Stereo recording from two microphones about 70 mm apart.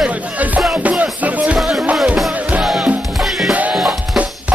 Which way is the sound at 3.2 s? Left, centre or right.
Centre.